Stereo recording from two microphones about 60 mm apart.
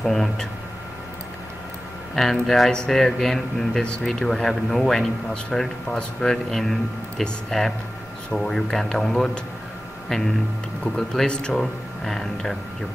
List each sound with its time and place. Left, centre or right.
0.0 s speech: centre
2.1 s speech: centre
11.2 s speech: centre